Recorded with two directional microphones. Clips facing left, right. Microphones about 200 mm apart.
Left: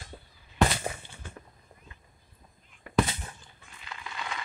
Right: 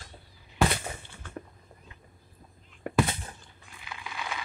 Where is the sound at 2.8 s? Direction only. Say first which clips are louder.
Left 1 dB; 55° right (ahead or behind).